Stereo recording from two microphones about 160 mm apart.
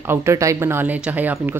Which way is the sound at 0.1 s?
15° right (ahead or behind).